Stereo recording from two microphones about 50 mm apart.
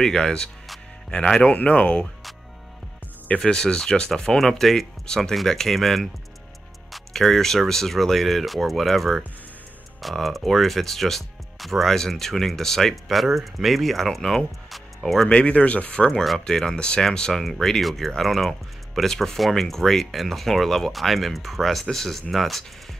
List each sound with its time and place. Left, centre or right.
0.0 s speech: centre
3.3 s speech: centre
15.2 s speech: left; by 22.7 s centre